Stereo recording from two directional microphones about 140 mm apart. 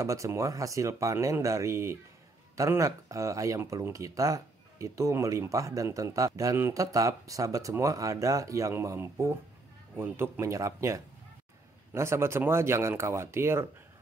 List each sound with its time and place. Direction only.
0.0 s speech: 20° right (ahead or behind)